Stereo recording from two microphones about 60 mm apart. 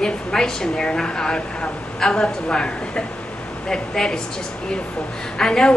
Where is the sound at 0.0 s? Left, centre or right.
Centre.